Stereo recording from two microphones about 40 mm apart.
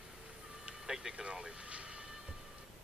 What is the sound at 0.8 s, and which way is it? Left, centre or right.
Music, centre.